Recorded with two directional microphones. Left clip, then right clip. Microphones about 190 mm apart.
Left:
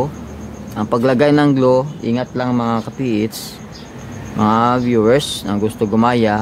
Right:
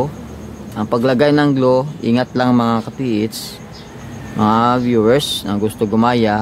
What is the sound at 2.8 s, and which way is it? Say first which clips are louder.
Speech: even; centre (ahead or behind).